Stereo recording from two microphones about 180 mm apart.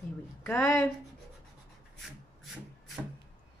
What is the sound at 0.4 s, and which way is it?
Speech, 15° left (ahead or behind).